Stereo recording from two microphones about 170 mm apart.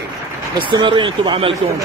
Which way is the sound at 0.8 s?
30° right (ahead or behind).